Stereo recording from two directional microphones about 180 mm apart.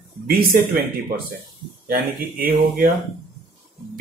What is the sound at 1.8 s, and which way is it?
Speech, 55° right (ahead or behind).